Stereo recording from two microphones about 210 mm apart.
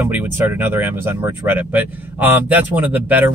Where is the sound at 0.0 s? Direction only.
10° right (ahead or behind).